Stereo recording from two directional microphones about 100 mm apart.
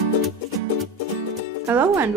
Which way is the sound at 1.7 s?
20° right (ahead or behind).